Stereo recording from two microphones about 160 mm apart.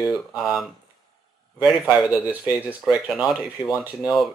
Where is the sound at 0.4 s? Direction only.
Centre (ahead or behind).